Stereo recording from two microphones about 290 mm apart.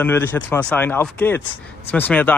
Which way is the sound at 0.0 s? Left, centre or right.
Centre.